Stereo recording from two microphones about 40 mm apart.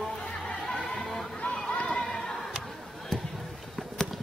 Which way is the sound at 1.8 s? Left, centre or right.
Left.